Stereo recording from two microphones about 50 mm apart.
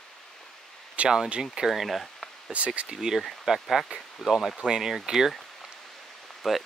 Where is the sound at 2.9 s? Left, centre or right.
Centre.